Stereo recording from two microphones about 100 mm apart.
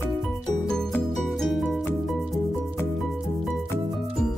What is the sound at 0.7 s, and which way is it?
Music, 5° left (ahead or behind).